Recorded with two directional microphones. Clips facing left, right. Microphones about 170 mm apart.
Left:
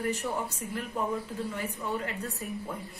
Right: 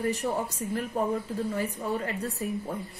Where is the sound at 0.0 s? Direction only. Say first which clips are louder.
Right 3 dB; 35° right (ahead or behind).